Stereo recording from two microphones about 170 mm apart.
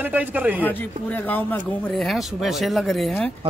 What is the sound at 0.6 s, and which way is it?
Speech, 10° left (ahead or behind).